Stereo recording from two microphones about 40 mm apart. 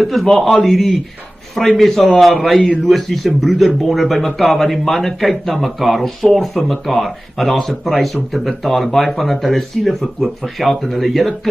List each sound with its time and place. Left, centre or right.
0.0 s speech: centre